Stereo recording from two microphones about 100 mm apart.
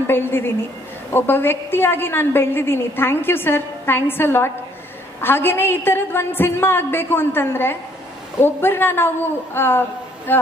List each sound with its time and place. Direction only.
0.0 s a woman's voice: 20° left (ahead or behind)